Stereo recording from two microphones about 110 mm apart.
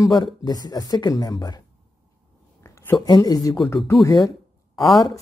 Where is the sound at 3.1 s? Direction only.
40° left (ahead or behind).